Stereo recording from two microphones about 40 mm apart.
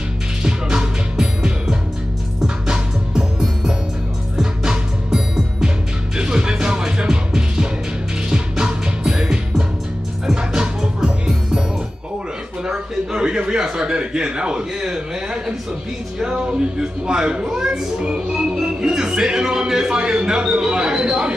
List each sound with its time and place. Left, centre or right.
0.4 s music: centre
12.6 s a sound: centre
16.2 s speech: centre